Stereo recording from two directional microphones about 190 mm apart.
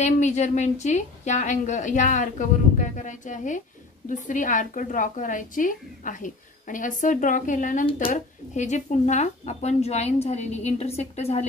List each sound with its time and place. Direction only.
0.0 s a woman's voice: 40° left (ahead or behind)